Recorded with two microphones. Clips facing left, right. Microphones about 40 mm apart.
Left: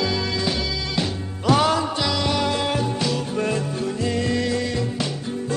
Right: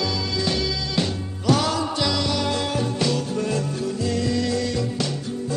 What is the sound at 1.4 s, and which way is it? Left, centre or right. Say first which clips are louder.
Music: left 3 dB; left.